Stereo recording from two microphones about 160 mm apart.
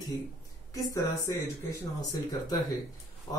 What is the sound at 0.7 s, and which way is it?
Speech, 20° left (ahead or behind).